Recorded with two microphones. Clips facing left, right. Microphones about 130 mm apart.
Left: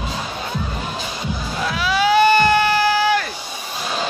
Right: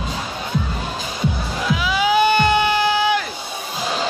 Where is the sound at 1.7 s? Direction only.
15° right (ahead or behind).